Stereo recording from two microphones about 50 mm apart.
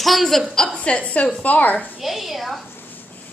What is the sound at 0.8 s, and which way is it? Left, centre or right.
A woman's voice, left.